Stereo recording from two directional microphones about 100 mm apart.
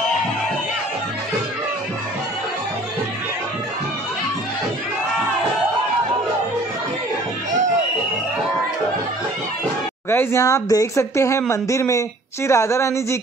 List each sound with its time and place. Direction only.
10.0 s speech: 25° left (ahead or behind)